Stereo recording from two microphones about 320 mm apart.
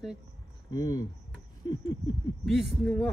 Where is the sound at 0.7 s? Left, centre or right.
Centre.